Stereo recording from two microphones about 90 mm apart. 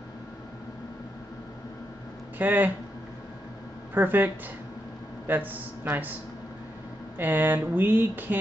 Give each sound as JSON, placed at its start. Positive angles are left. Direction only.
{"t": 2.3, "sound": "speech", "side_deg": -20}
{"t": 3.9, "sound": "speech", "side_deg": -20}
{"t": 7.2, "sound": "speech", "side_deg": -20}